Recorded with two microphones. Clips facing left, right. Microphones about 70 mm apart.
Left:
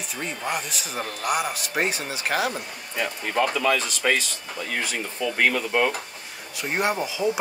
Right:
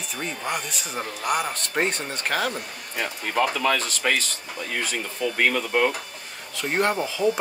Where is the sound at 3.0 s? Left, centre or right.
Right.